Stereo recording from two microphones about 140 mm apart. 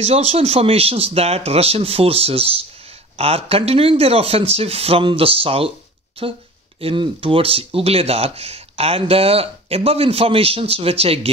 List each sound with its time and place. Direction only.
0.0 s speech: 50° right (ahead or behind)